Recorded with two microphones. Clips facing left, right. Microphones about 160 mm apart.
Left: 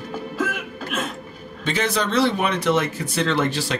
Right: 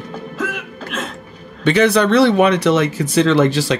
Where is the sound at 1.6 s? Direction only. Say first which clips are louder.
Right 10 dB; 65° right (ahead or behind).